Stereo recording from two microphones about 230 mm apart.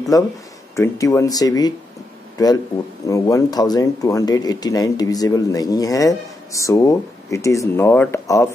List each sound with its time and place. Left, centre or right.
0.1 s a man's voice: centre